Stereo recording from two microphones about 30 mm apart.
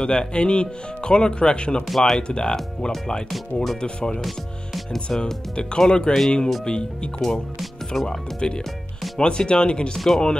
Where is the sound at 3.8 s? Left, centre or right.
Left.